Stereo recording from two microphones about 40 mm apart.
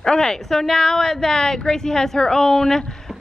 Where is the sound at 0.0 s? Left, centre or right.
Centre.